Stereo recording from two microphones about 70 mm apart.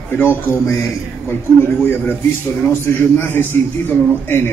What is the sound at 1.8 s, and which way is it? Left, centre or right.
A man's voice, left.